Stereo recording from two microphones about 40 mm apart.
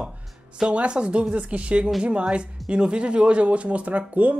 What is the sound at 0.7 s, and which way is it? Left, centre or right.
Speech, right.